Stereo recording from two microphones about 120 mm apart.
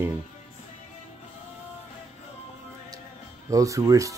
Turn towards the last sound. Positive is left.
turn(degrees=-25)  # may be behind; listen again after turning